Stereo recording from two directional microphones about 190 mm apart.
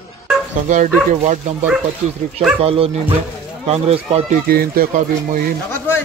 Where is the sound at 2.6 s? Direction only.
30° right (ahead or behind).